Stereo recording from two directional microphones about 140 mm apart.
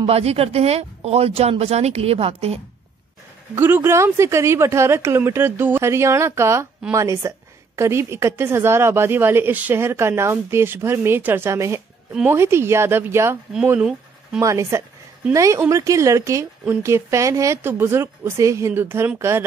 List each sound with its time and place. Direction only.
0.0 s speech: 45° right (ahead or behind)
3.5 s a woman's voice: 15° right (ahead or behind)
13.7 s speech: 5° right (ahead or behind)
14.4 s a woman's voice: 20° right (ahead or behind)